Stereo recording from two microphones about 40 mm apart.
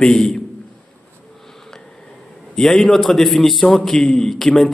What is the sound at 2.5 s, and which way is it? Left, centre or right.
A man's voice, centre.